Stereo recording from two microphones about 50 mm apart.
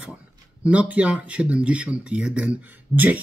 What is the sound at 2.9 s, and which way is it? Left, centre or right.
Speech, centre.